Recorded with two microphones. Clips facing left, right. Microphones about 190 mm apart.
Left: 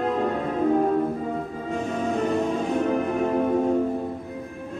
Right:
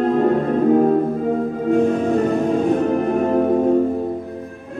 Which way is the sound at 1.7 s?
55° right (ahead or behind).